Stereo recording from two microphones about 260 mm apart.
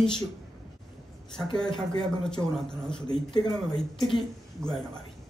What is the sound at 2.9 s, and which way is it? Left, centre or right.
Speech, centre.